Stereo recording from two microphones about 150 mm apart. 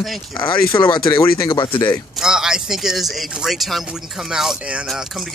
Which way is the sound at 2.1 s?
5° right (ahead or behind).